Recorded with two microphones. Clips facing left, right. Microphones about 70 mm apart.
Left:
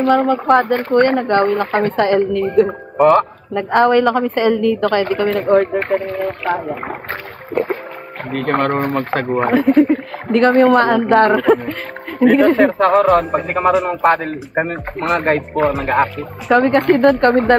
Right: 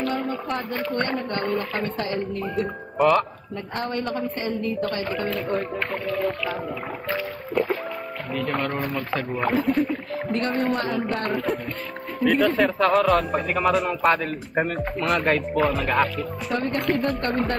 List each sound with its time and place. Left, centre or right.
0.0 s speech: left
1.9 s a woman's voice: left
3.5 s a woman's voice: left
6.4 s speech: left
16.5 s a woman's voice: left